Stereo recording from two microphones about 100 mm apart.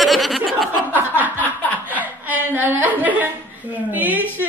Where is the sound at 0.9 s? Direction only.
15° right (ahead or behind).